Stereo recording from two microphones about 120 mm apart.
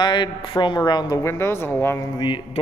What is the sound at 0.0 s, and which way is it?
Speech, 40° left (ahead or behind).